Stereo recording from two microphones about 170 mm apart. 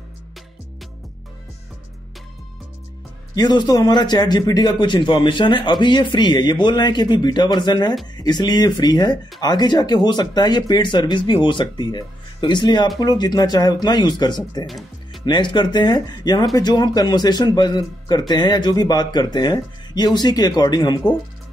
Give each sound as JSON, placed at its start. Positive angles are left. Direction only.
{"t": 3.3, "sound": "speech", "side_deg": 25}